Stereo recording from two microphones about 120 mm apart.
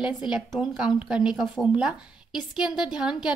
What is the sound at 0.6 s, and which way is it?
A woman's voice, 5° right (ahead or behind).